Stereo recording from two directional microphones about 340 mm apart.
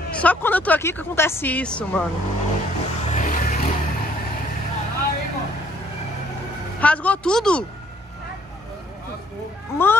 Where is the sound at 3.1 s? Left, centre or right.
Left.